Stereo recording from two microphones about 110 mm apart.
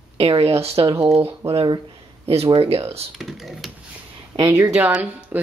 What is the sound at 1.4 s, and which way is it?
Speech, 25° right (ahead or behind).